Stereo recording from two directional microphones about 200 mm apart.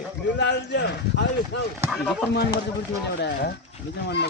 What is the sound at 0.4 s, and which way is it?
Speech, 60° left (ahead or behind).